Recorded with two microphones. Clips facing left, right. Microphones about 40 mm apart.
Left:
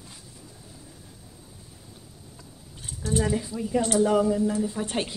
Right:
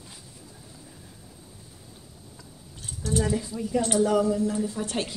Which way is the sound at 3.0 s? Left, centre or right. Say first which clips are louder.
Left 1 dB; centre.